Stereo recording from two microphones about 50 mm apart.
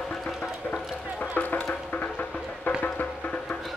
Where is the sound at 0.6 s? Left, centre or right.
Left.